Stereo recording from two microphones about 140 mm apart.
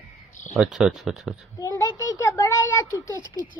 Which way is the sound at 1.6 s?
25° left (ahead or behind).